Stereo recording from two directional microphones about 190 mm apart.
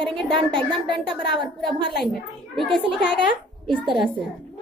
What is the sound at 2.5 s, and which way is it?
Speech, centre (ahead or behind).